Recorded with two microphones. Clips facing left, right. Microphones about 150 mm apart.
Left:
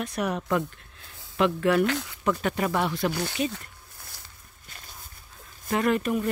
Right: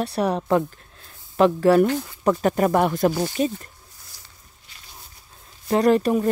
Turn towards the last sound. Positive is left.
turn(degrees=-35)  # may be behind; listen again after turning